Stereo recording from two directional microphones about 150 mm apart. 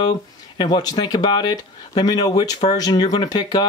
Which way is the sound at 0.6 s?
25° left (ahead or behind).